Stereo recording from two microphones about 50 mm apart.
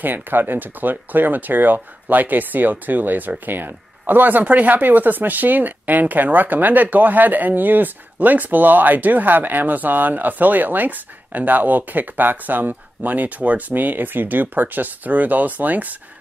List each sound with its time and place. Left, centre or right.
0.0 s speech: right